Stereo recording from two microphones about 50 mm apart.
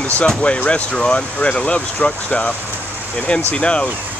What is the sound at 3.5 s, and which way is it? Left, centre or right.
Speech, left.